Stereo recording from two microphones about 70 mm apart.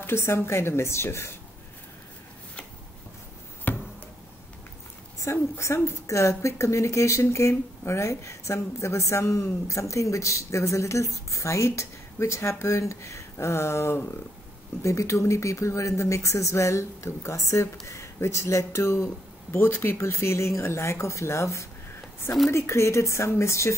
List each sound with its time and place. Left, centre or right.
0.0 s speech: left
3.7 s a sound: left
5.2 s a woman's voice: left
14.8 s a woman's voice: left